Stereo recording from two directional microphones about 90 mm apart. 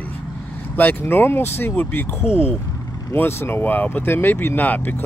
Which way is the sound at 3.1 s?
25° left (ahead or behind).